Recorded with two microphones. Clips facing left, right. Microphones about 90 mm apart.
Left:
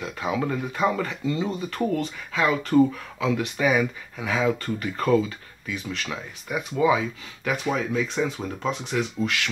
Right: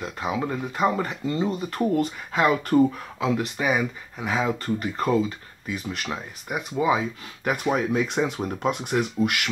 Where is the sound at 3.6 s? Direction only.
25° right (ahead or behind).